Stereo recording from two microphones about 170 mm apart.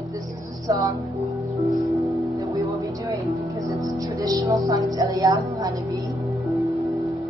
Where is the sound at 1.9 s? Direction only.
20° right (ahead or behind).